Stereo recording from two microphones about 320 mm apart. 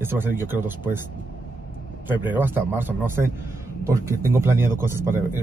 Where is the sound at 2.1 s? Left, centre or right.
Centre.